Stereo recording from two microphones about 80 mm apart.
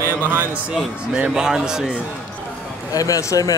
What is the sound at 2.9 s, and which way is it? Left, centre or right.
Speech, left.